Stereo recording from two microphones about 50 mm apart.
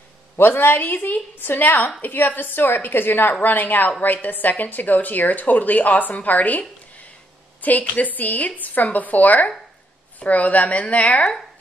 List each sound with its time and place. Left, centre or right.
0.4 s a woman's voice: left
7.6 s a woman's voice: left